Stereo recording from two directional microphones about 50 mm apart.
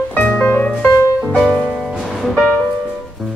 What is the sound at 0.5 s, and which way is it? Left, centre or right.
Music, left.